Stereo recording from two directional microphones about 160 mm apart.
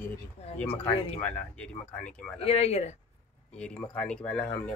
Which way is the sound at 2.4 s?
40° left (ahead or behind).